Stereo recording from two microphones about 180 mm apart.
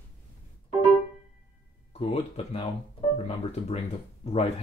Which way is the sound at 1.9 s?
30° left (ahead or behind).